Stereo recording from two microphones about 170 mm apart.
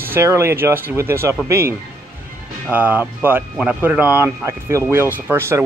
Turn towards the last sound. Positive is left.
turn(degrees=-15)  # may be behind; listen again after turning